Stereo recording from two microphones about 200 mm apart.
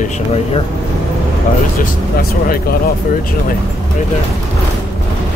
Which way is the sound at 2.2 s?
50° left (ahead or behind).